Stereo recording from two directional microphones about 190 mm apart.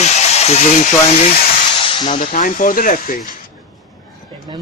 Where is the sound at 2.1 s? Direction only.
40° left (ahead or behind).